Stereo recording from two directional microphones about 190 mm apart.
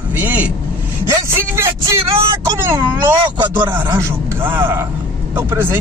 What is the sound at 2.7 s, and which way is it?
Speech, 10° right (ahead or behind).